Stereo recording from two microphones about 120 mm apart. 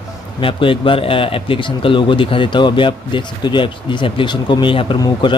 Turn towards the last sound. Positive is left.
turn(degrees=40)  # may be behind; listen again after turning